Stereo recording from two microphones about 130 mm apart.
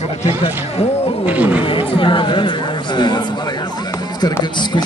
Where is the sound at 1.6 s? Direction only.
45° left (ahead or behind).